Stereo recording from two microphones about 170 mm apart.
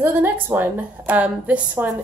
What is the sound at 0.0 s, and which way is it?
A woman's voice, 10° right (ahead or behind).